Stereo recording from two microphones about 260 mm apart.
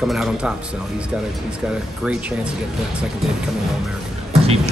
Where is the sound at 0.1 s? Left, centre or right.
Centre.